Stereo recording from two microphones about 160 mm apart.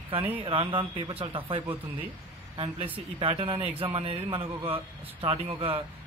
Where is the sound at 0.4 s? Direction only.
35° right (ahead or behind).